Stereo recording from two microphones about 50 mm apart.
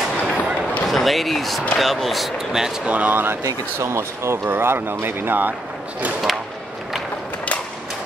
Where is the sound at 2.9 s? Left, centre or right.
Right.